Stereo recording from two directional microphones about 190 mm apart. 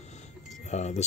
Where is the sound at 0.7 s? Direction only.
35° left (ahead or behind).